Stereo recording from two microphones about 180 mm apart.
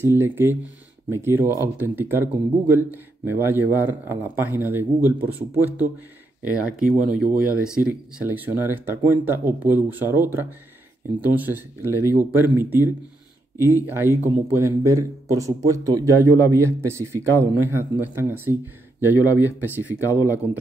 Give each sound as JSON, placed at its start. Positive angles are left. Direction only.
{"t": 0.0, "sound": "speech", "side_deg": -15}
{"t": 14.2, "sound": "speech", "side_deg": -15}